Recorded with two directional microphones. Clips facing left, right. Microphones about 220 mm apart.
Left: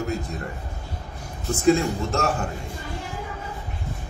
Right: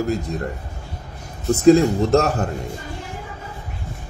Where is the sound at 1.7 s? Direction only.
35° right (ahead or behind).